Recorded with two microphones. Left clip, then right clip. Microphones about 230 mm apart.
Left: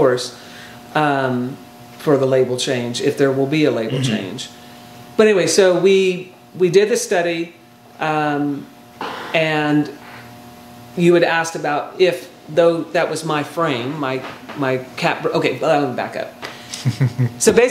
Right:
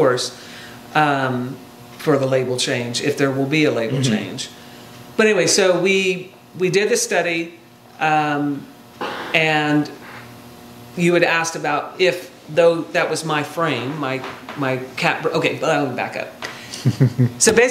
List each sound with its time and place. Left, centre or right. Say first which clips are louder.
0.0 s speech: left 1 dB; right
5.1 s speech: left 2 dB; right
11.0 s speech: left 2 dB; right